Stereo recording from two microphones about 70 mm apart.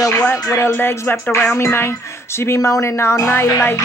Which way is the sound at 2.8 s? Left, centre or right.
Left.